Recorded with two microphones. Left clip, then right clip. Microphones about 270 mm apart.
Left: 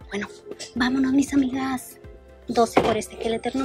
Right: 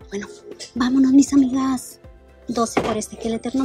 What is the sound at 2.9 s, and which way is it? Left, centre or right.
Speech, centre.